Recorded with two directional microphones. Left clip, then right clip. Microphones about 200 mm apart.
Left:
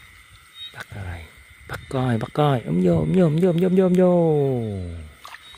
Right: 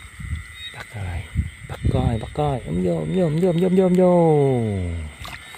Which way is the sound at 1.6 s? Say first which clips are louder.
Even; 20° left (ahead or behind).